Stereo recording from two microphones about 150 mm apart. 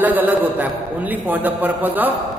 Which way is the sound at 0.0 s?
10° right (ahead or behind).